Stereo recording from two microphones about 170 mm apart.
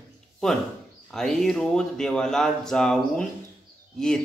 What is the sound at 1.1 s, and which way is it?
Speech, 5° left (ahead or behind).